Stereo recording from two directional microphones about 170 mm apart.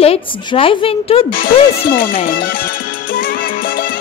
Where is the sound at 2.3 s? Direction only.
60° left (ahead or behind).